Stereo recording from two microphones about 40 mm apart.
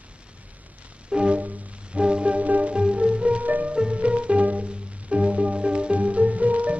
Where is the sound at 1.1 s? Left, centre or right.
Right.